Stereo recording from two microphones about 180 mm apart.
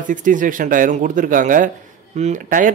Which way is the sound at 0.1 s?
45° right (ahead or behind).